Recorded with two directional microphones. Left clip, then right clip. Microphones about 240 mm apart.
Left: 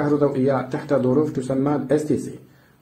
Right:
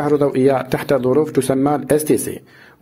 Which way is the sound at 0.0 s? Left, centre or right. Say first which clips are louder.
Right 5 dB; right.